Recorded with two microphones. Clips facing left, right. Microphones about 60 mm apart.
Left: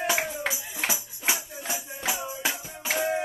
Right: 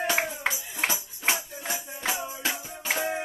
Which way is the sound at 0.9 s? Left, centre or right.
Centre.